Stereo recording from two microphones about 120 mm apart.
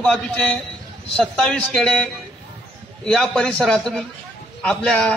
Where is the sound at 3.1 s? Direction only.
5° left (ahead or behind).